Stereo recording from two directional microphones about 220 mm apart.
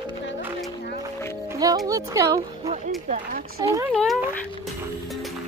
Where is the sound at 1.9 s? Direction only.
15° right (ahead or behind).